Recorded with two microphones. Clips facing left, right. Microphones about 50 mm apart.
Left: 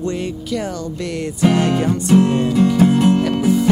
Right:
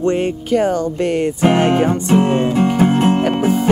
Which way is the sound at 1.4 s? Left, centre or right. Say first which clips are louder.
Right 2 dB; right.